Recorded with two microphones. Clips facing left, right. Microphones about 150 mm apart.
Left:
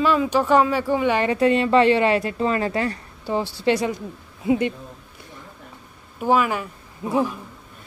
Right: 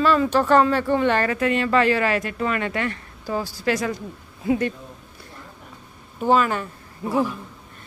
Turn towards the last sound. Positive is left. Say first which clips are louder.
# even
turn(degrees=10)  # may be behind; listen again after turning